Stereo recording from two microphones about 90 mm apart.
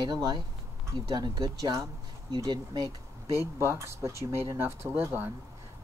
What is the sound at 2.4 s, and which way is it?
Speech, 50° right (ahead or behind).